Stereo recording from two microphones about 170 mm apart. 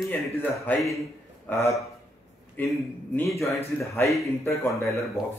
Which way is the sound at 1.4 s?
15° left (ahead or behind).